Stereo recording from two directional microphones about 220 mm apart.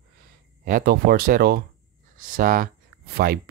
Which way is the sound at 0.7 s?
40° right (ahead or behind).